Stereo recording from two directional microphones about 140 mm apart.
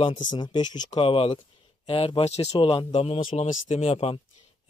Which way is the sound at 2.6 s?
40° left (ahead or behind).